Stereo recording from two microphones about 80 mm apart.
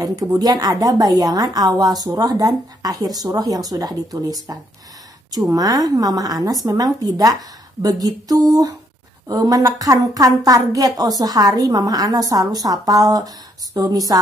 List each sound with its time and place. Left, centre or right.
0.0 s a woman's voice: right